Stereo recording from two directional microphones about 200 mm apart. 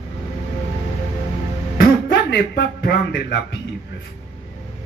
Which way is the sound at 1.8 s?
55° left (ahead or behind).